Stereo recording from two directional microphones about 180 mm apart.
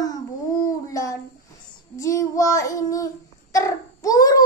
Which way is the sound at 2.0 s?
15° left (ahead or behind).